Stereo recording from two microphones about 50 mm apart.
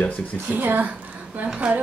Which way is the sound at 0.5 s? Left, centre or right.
Right.